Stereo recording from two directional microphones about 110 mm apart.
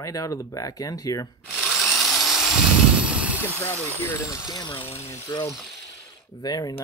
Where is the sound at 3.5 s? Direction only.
20° left (ahead or behind).